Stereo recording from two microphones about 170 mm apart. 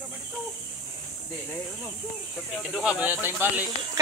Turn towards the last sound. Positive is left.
turn(degrees=-15)  # may be behind; listen again after turning